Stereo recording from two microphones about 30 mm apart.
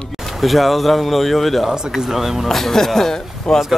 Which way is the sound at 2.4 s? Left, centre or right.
Centre.